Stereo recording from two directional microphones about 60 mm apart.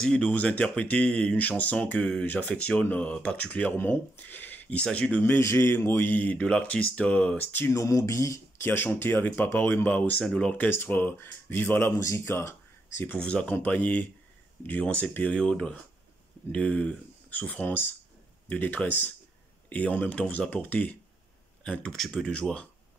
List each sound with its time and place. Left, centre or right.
0.0 s speech: centre
3.7 s speech: left
5.4 s a man's voice: left
6.0 s speech: left
7.7 s a sound: left
8.5 s speech: left
10.2 s speech: centre
10.6 s speech: left
12.0 s speech: left
13.1 s speech: centre
21.9 s speech: centre